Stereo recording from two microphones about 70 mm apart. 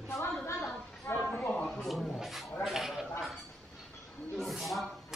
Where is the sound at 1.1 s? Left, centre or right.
Left.